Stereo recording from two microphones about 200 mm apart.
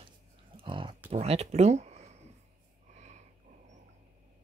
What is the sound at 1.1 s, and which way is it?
Speech, 30° right (ahead or behind).